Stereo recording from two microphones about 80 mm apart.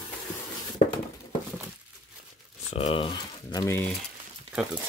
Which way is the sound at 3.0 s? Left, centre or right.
Left.